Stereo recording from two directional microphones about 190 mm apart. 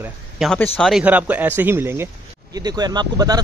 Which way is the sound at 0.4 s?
5° left (ahead or behind).